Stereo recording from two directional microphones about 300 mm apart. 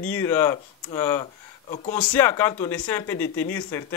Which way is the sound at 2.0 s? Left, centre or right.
Centre.